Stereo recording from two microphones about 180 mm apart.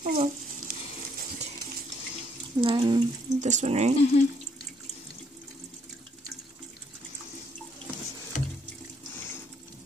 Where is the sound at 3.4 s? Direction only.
40° right (ahead or behind).